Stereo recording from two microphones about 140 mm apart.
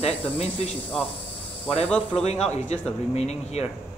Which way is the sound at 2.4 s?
50° left (ahead or behind).